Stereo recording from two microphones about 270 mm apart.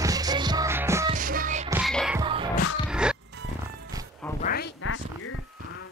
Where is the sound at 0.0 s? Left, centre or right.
Centre.